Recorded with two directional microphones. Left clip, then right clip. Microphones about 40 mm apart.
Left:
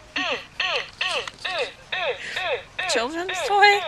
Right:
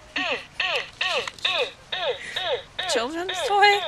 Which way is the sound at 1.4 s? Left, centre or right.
Right.